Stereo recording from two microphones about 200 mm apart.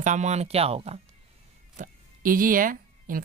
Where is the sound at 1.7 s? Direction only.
45° right (ahead or behind).